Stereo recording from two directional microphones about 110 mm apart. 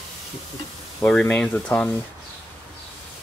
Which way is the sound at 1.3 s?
10° left (ahead or behind).